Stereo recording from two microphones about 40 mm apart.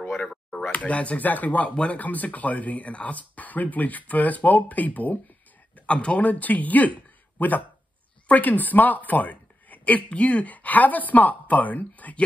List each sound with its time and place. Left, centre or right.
0.6 s speech: left
5.8 s speech: left